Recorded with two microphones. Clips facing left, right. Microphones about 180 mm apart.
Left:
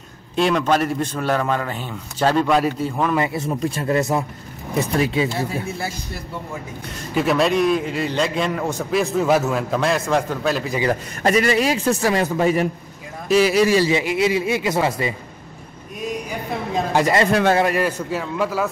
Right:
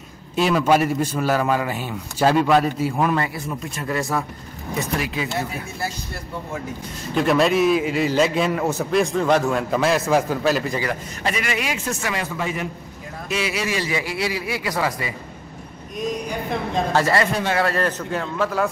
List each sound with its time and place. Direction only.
0.4 s a man's voice: 5° right (ahead or behind)
3.2 s a man's voice: 25° left (ahead or behind)
7.2 s a man's voice: centre (ahead or behind)
10.9 s a man's voice: 40° left (ahead or behind)
13.9 s a man's voice: 20° left (ahead or behind)
16.9 s a man's voice: 15° left (ahead or behind)